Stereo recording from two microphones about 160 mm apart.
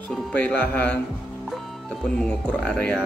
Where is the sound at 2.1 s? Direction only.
5° left (ahead or behind).